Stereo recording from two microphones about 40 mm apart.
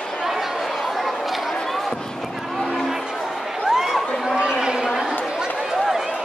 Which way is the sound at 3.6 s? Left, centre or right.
Centre.